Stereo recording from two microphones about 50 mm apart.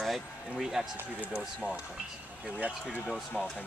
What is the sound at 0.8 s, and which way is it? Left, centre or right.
Speech, centre.